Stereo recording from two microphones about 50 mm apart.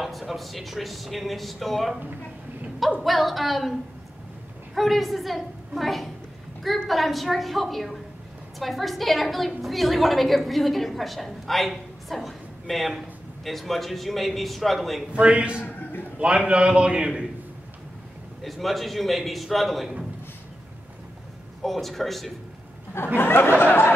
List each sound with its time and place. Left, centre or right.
0.0 s a woman's voice: centre
3.0 s a woman's voice: centre
4.7 s a woman's voice: centre
15.1 s a man's voice: right
18.4 s a woman's voice: centre
21.6 s a woman's voice: centre
23.1 s speech: left